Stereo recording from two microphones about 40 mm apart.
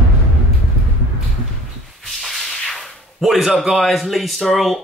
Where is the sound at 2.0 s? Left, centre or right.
Centre.